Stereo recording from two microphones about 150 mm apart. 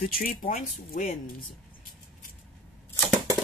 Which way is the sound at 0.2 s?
70° left (ahead or behind).